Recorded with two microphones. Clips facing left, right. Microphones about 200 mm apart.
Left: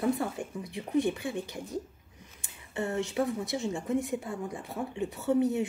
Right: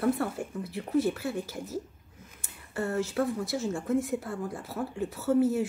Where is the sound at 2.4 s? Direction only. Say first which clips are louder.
Right 1 dB; centre (ahead or behind).